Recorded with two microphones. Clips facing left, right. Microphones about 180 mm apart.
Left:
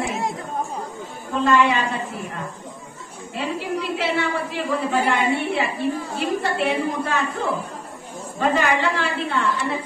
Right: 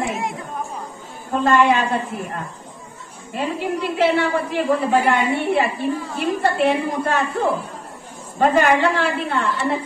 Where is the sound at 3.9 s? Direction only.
55° right (ahead or behind).